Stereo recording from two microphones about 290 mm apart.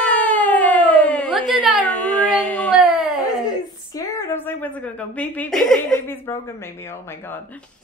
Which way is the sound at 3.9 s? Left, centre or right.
Centre.